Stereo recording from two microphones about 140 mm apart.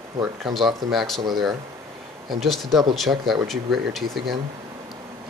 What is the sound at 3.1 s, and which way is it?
Speech, 15° right (ahead or behind).